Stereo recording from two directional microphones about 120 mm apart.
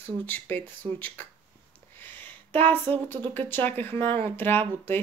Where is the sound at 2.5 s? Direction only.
15° left (ahead or behind).